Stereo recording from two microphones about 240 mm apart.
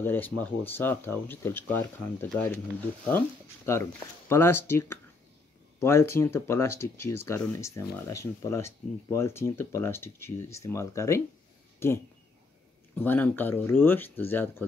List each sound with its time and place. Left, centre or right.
0.0 s speech: centre